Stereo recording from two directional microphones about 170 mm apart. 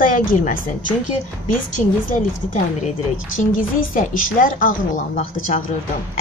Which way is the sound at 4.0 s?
50° left (ahead or behind).